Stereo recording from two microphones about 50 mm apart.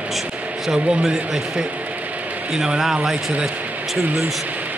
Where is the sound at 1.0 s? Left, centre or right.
Centre.